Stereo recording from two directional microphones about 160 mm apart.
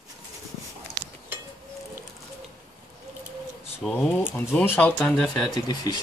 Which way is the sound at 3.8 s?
10° left (ahead or behind).